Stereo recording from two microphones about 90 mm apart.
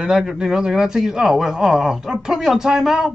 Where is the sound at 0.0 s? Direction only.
10° right (ahead or behind).